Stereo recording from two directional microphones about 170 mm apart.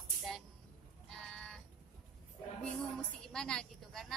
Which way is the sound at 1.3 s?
5° left (ahead or behind).